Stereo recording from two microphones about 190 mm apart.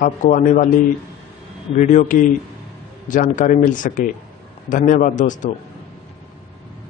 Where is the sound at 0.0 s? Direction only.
45° left (ahead or behind).